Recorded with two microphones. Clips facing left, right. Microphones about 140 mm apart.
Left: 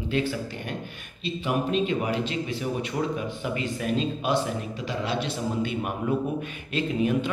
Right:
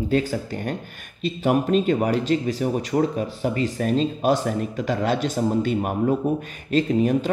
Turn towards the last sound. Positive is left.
turn(degrees=-40)  # may be behind; listen again after turning